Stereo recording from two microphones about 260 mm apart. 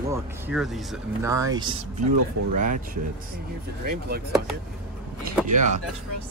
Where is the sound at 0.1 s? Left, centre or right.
Centre.